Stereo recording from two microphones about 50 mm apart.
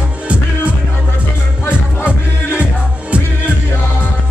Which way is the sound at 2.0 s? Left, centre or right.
Right.